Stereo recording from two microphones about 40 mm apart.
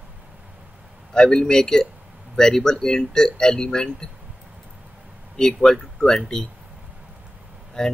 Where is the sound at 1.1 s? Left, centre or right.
Centre.